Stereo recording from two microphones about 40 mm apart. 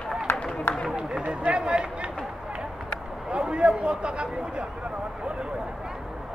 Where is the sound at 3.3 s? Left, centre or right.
Right.